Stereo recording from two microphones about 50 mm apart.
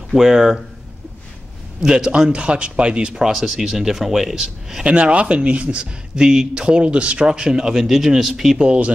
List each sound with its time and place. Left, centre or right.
0.1 s speech: centre
1.8 s a man's voice: centre
4.8 s speech: right
8.6 s a man's voice: right